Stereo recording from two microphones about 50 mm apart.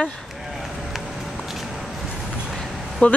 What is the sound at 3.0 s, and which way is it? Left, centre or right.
Speech, left.